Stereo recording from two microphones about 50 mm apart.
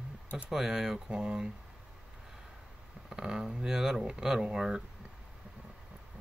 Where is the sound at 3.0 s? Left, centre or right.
Centre.